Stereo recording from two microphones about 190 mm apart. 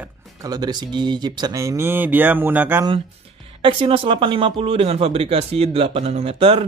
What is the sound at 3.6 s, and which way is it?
Speech, 25° right (ahead or behind).